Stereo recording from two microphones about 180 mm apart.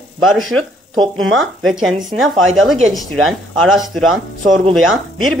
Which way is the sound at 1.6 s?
Centre (ahead or behind).